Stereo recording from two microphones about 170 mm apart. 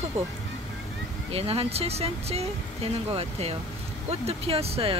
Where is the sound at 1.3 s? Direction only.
35° right (ahead or behind).